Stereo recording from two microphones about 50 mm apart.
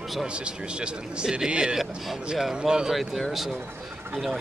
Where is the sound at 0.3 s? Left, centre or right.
Right.